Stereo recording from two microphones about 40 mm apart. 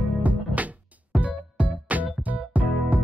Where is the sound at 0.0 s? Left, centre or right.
Right.